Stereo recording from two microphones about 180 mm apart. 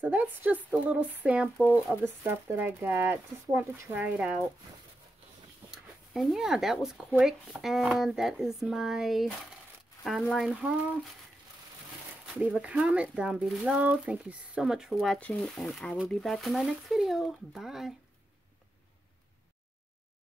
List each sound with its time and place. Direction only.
0.0 s speech: 10° right (ahead or behind)
5.7 s speech: centre (ahead or behind)
12.4 s speech: 5° right (ahead or behind)